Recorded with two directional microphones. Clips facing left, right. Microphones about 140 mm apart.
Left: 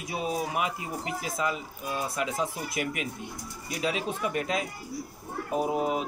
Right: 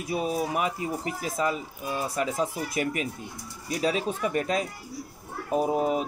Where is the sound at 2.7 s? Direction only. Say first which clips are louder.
Right 3 dB; 40° right (ahead or behind).